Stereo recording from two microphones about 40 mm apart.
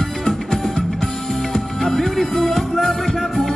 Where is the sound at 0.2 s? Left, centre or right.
Centre.